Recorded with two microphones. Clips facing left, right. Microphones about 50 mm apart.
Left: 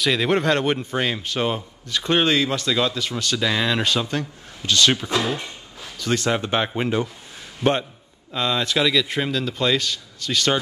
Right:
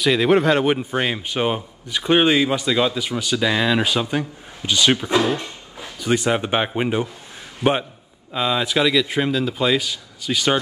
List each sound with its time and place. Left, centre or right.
0.0 s a man's voice: centre
8.3 s a man's voice: centre